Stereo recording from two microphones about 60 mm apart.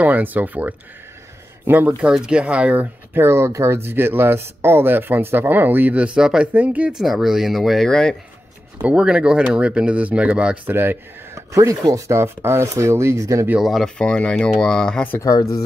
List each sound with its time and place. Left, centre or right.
0.0 s speech: right
1.9 s speech: centre
3.2 s speech: right; by 6.5 s centre
6.5 s speech: right
6.9 s speech: centre
8.8 s speech: centre
10.7 s speech: right
11.3 s speech: right
13.6 s speech: centre
13.8 s speech: centre